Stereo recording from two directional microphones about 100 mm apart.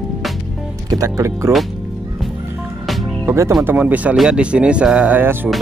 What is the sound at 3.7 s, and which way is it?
Speech, 15° right (ahead or behind).